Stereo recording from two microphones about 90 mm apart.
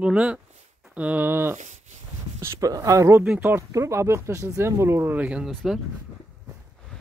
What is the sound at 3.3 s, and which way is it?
Speech, 20° right (ahead or behind).